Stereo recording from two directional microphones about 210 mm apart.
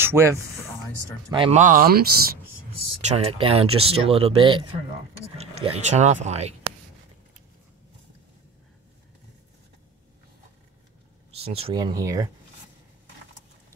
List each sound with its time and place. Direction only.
0.0 s speech: 10° right (ahead or behind)
1.3 s speech: 25° right (ahead or behind)
1.6 s speech: 40° right (ahead or behind)
3.0 s speech: 30° right (ahead or behind)
11.3 s speech: 30° right (ahead or behind)